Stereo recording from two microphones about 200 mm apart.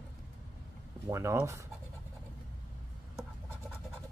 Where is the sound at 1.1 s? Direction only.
15° right (ahead or behind).